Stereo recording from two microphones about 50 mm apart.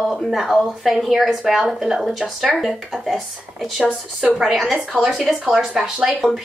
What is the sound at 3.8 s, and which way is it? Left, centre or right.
A woman's voice, centre.